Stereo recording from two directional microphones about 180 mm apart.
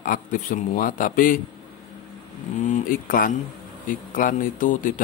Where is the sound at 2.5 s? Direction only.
45° left (ahead or behind).